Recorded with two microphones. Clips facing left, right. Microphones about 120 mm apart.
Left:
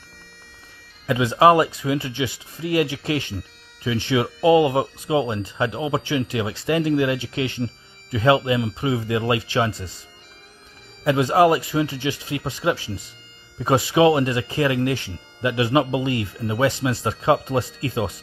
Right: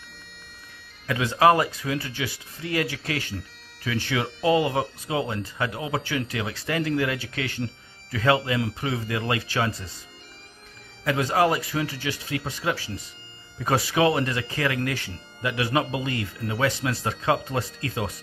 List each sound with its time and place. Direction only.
1.0 s speech: 25° left (ahead or behind)
11.1 s speech: 25° left (ahead or behind)